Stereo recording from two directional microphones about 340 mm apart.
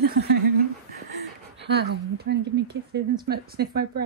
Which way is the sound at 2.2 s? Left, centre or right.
Right.